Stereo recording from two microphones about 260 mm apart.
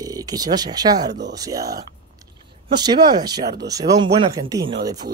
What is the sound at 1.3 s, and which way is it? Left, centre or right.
Speech, centre.